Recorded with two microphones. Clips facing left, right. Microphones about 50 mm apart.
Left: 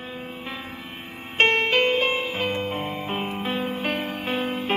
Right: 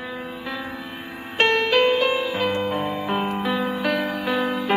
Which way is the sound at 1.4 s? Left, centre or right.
Left.